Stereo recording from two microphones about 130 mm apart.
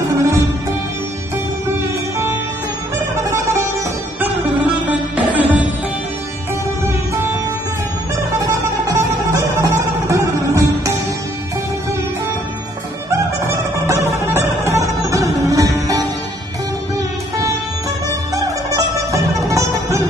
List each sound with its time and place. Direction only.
3.3 s music: 25° right (ahead or behind)
4.2 s music: 10° right (ahead or behind)
8.5 s music: 25° right (ahead or behind)
13.1 s music: 20° right (ahead or behind)
18.3 s music: 25° right (ahead or behind)